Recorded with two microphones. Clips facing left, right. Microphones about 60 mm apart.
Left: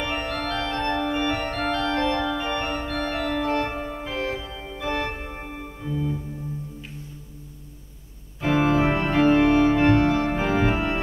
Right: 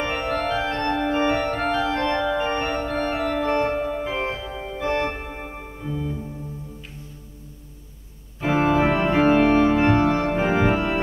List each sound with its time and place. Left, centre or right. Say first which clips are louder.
0.0 s organ: right 3 dB; centre
2.9 s organ: right 3 dB; centre
5.5 s music: even; centre
8.4 s organ: right 1 dB; centre